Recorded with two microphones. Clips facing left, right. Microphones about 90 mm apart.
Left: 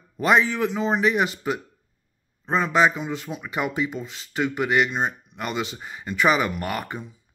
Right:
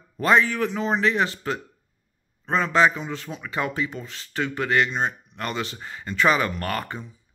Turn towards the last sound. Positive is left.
turn(degrees=15)  # may be behind; listen again after turning